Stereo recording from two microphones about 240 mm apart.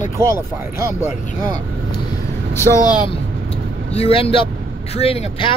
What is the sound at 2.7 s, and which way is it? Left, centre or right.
Speech, centre.